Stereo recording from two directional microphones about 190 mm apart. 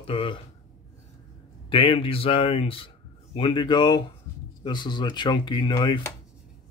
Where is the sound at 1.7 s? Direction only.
30° left (ahead or behind).